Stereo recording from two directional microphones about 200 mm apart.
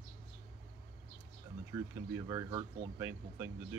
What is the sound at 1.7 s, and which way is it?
Speech, 15° right (ahead or behind).